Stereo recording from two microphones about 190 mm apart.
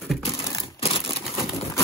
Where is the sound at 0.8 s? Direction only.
30° left (ahead or behind).